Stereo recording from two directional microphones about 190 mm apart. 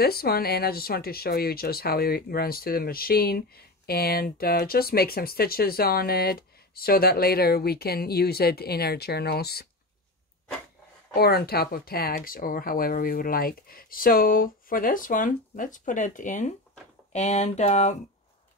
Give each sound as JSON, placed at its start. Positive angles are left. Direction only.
{"t": 0.0, "sound": "speech", "side_deg": 55}
{"t": 11.1, "sound": "speech", "side_deg": 55}
{"t": 17.1, "sound": "a sound", "side_deg": 40}